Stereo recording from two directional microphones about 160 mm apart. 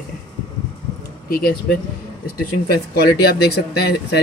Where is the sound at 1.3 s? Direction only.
75° left (ahead or behind).